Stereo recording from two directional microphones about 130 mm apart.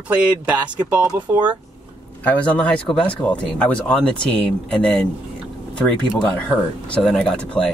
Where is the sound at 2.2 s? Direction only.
10° left (ahead or behind).